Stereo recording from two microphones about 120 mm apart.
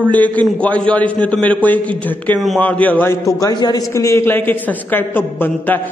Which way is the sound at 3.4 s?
35° left (ahead or behind).